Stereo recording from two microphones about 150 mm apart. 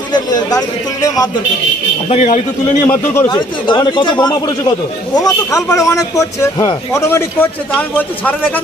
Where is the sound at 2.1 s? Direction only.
50° left (ahead or behind).